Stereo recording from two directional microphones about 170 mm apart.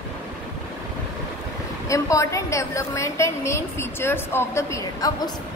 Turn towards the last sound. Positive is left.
turn(degrees=15)  # may be behind; listen again after turning